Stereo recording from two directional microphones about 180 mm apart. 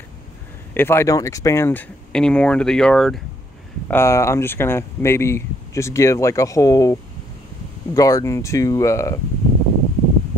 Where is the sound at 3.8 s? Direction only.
15° left (ahead or behind).